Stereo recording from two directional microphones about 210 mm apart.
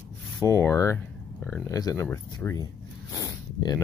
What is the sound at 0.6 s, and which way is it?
Speech, 15° left (ahead or behind).